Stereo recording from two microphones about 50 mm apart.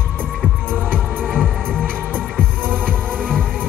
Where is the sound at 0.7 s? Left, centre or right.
Right.